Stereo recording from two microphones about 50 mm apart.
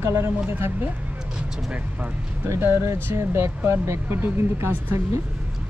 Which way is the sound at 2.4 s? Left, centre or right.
Right.